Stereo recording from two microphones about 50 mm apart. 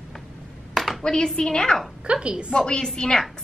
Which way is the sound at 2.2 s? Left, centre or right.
Right.